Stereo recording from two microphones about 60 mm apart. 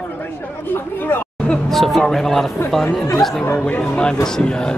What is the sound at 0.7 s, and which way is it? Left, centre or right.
Speech, left.